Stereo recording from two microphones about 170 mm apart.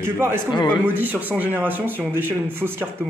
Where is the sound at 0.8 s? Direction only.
10° right (ahead or behind).